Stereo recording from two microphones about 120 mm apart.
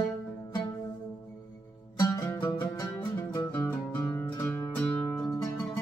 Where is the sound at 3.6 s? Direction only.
20° left (ahead or behind).